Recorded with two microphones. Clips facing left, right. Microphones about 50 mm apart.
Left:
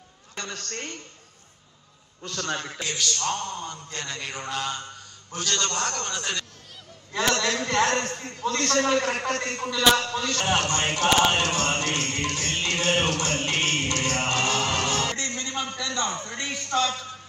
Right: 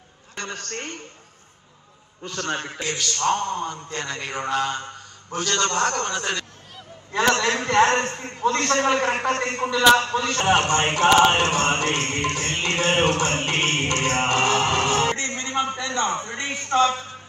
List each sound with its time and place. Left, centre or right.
0.4 s a man's voice: right
2.3 s a man's voice: right